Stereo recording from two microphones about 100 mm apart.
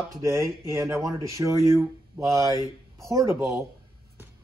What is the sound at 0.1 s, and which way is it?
Speech, 30° right (ahead or behind).